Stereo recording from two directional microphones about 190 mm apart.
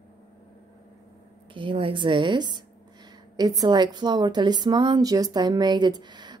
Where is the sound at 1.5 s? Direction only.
25° right (ahead or behind).